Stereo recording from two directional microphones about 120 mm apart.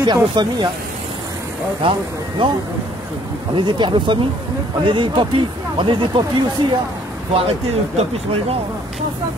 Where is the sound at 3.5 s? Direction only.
40° right (ahead or behind).